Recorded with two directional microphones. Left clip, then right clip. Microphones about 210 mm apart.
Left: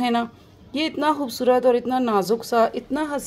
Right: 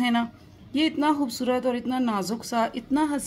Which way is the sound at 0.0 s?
45° left (ahead or behind).